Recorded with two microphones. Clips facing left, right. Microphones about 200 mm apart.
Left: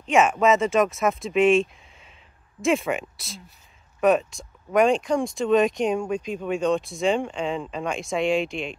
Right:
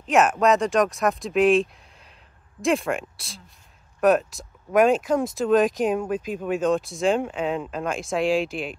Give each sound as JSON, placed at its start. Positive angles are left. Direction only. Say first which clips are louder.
{"t": 0.0, "sound": "speech", "louder": "even", "side_deg": 0}